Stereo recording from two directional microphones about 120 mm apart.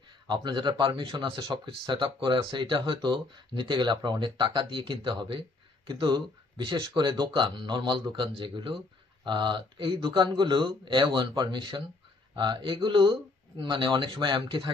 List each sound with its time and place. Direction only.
0.3 s speech: 40° right (ahead or behind)